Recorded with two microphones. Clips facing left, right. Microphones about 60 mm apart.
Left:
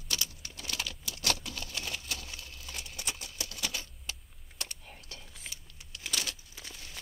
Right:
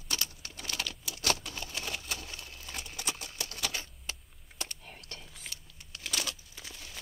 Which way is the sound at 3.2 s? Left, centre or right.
Right.